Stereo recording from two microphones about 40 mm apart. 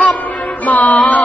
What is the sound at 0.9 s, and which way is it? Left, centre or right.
Mantra, left.